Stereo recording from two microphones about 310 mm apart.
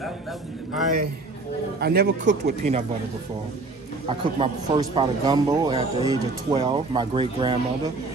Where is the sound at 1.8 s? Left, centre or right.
Right.